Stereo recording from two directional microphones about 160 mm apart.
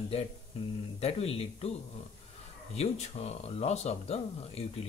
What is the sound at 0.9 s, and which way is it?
Speech, 40° left (ahead or behind).